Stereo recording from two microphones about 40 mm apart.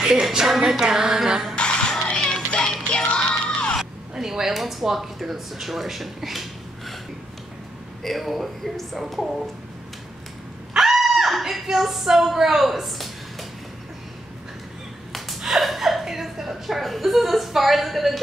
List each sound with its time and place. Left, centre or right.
0.0 s a sound: centre
1.5 s music: left
4.1 s speech: centre
8.0 s a woman's voice: centre
10.7 s a sound: centre
11.6 s a woman's voice: centre
15.4 s a woman's voice: centre